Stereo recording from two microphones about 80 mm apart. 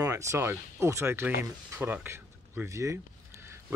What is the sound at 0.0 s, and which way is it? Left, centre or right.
Speech, right.